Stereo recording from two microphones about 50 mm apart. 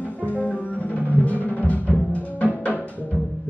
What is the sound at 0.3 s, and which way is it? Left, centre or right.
Music, left.